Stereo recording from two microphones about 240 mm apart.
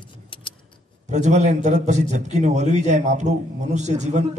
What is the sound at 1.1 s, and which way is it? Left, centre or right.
A man's voice, right.